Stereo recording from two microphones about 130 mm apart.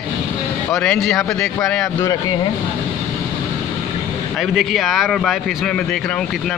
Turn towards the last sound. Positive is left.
turn(degrees=0)  # may be behind; listen again after turning